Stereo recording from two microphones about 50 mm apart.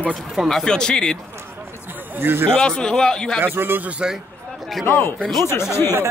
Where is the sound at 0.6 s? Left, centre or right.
Centre.